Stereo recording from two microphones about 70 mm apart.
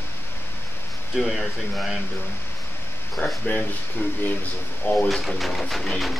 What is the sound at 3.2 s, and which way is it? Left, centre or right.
Speech, left.